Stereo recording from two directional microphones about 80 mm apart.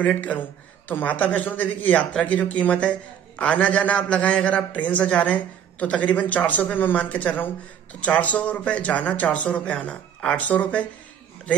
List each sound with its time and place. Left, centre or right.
0.0 s a man's voice: centre